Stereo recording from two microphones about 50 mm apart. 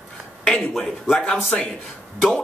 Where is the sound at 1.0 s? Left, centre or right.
Left.